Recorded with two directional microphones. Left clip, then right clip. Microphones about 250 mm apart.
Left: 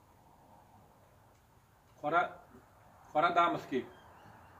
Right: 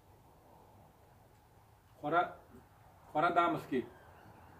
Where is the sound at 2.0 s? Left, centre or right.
Centre.